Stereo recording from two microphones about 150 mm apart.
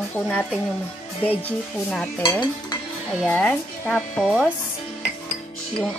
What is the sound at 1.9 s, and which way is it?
Speech, 5° left (ahead or behind).